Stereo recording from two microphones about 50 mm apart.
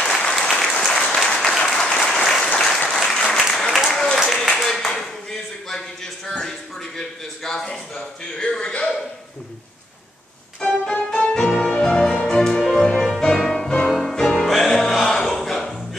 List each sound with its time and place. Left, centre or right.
0.3 s applause: centre
0.9 s applause: centre
3.3 s a sound: centre
10.6 s keyboard: centre
11.3 s music: centre